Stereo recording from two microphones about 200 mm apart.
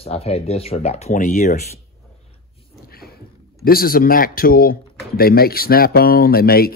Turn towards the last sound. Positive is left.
turn(degrees=50)  # may be behind; listen again after turning